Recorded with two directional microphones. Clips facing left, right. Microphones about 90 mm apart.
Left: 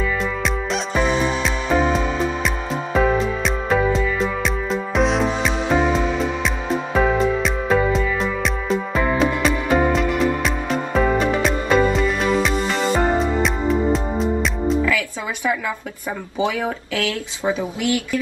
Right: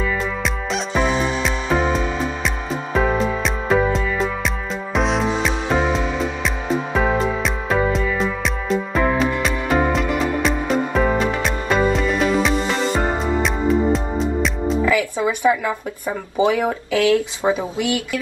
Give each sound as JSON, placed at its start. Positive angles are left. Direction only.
{"t": 0.0, "sound": "music", "side_deg": 0}
{"t": 14.9, "sound": "speech", "side_deg": -20}